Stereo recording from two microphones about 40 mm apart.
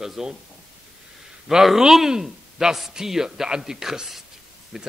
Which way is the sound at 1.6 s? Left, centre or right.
Centre.